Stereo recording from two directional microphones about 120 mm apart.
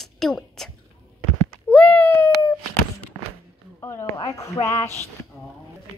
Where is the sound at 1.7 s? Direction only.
10° left (ahead or behind).